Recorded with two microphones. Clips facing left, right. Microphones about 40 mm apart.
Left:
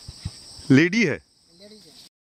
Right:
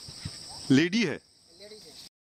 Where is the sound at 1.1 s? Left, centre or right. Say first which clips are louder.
Left 6 dB; centre.